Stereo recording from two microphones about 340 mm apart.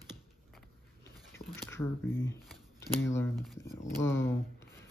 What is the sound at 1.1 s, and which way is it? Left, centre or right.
Biting, centre.